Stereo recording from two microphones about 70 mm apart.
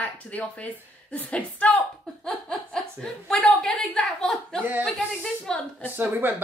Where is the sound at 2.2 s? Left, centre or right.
Centre.